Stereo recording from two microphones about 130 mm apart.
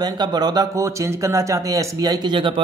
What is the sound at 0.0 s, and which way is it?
Speech, 35° right (ahead or behind).